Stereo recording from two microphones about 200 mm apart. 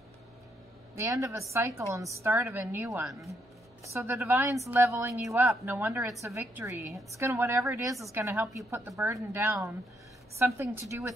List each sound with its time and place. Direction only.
0.9 s a woman's voice: 15° right (ahead or behind)
3.1 s speech: centre (ahead or behind)
3.8 s a woman's voice: 15° right (ahead or behind)